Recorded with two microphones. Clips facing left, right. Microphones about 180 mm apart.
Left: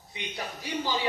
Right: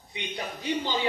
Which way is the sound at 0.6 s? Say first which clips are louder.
Right 2 dB; 25° right (ahead or behind).